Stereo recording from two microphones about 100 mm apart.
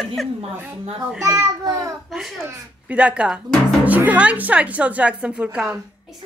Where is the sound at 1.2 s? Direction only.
30° right (ahead or behind).